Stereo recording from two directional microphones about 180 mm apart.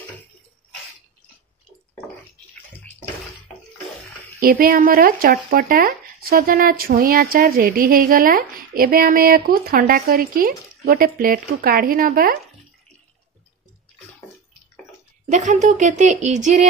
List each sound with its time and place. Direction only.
4.4 s speech: 50° right (ahead or behind)
15.2 s a woman's voice: 40° right (ahead or behind)